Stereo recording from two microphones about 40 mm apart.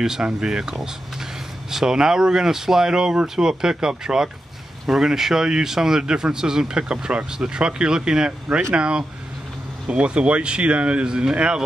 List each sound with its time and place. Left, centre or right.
0.0 s speech: centre
8.5 s speech: right